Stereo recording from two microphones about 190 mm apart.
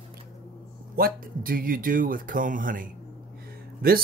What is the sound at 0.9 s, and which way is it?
Speech, 50° right (ahead or behind).